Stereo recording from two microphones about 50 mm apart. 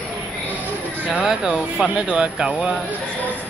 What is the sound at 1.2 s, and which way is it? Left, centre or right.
Speech, centre.